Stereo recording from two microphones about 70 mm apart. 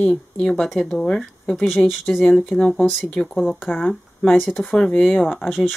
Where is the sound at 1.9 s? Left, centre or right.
Centre.